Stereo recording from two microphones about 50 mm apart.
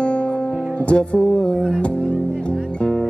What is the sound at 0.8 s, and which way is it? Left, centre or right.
Music, left.